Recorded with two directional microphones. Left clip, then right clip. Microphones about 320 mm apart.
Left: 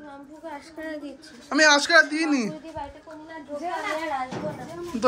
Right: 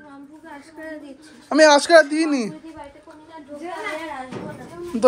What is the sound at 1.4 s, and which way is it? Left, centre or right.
Speech, centre.